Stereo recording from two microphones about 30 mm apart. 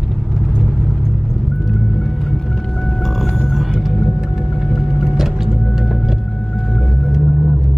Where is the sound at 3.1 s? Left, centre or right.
Centre.